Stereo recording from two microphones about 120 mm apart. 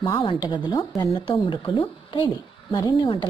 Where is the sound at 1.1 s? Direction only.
50° left (ahead or behind).